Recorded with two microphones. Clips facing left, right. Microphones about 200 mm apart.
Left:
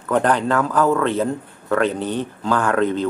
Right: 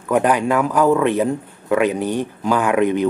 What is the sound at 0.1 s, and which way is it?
A man's voice, 10° right (ahead or behind).